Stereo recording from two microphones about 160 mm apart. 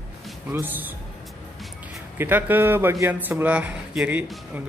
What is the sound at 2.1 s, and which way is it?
Speech, 10° right (ahead or behind).